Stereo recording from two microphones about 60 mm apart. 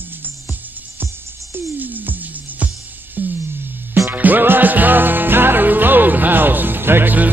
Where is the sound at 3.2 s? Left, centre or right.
Right.